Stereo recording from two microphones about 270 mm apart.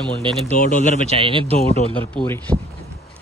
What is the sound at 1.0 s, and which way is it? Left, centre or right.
Speech, centre.